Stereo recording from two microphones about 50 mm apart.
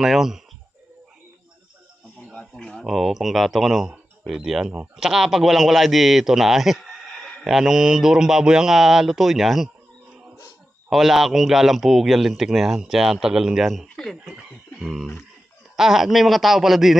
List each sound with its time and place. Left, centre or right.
0.0 s a man's voice: centre
2.3 s speech: centre
2.8 s a man's voice: centre
10.9 s a man's voice: centre
14.8 s a sound: centre
15.7 s a man's voice: centre